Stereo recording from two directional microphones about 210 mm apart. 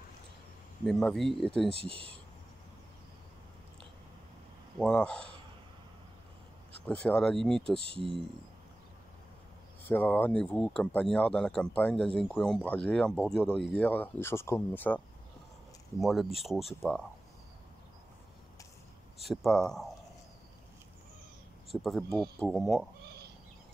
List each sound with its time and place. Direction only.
0.8 s speech: centre (ahead or behind)
1.9 s speech: 25° right (ahead or behind)
4.7 s speech: 5° left (ahead or behind)
6.9 s speech: 5° left (ahead or behind)
7.9 s speech: 25° right (ahead or behind)
9.8 s speech: 10° left (ahead or behind)
16.0 s speech: centre (ahead or behind)
19.1 s speech: centre (ahead or behind)
21.8 s speech: centre (ahead or behind)